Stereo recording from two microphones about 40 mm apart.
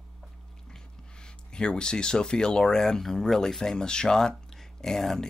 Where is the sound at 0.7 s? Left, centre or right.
Centre.